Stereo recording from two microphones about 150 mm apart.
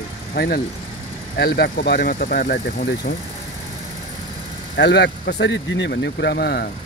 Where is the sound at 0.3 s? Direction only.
90° left.